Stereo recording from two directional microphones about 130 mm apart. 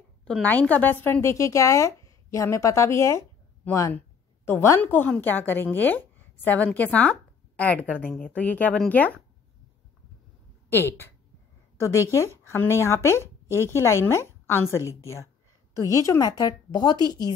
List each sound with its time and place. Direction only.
0.2 s a woman's voice: 10° left (ahead or behind)
10.7 s a woman's voice: 15° left (ahead or behind); by 17.0 s 30° left (ahead or behind)